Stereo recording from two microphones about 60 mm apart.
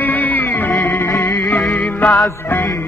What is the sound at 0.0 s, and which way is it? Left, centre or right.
Music, left.